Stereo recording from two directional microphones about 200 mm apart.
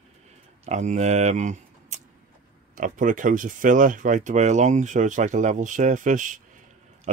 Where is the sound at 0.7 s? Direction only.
35° right (ahead or behind).